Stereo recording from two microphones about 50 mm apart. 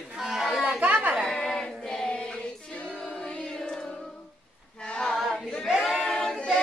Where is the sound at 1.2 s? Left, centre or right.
Centre.